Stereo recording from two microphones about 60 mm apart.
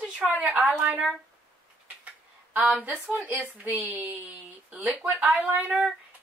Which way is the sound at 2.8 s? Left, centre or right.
Right.